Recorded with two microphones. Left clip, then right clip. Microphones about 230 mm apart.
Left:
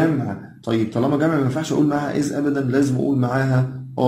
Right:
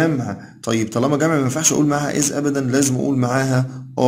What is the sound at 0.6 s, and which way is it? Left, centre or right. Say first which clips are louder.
A man's voice: right 1 dB; right.